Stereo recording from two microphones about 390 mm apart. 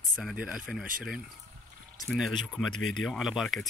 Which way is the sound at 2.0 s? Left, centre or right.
Centre.